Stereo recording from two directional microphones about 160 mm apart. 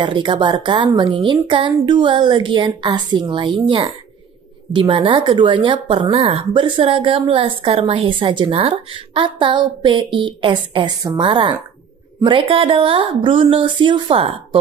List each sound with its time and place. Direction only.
0.0 s speech: 30° right (ahead or behind)